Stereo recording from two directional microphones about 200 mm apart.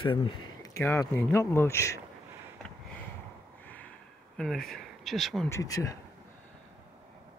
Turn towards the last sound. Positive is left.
turn(degrees=15)  # may be behind; listen again after turning